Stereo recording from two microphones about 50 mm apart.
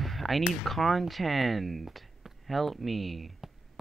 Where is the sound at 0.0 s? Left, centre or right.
Centre.